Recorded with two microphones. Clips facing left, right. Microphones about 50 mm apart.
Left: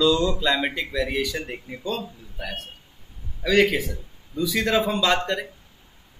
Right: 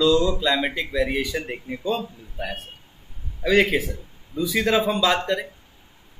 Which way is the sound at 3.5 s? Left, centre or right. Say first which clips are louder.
Even; centre.